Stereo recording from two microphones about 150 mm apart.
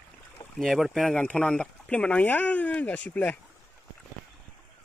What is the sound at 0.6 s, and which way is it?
Speech, centre (ahead or behind).